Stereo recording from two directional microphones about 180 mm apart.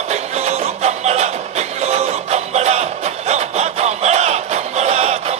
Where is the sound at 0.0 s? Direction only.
40° right (ahead or behind).